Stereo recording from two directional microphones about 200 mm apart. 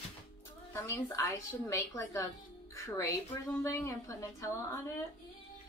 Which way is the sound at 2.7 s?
15° left (ahead or behind).